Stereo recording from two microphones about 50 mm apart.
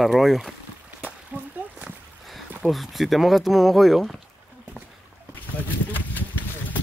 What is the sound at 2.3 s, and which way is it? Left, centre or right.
Speech, centre.